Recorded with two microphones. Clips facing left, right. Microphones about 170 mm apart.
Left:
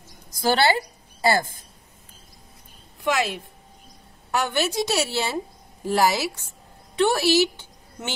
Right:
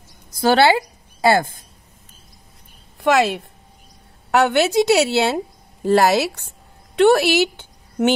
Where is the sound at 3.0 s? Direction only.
70° right (ahead or behind).